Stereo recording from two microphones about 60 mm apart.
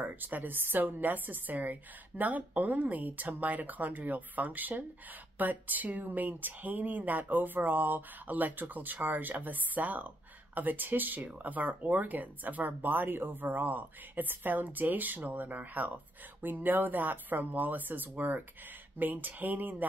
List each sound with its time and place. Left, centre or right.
0.0 s speech: right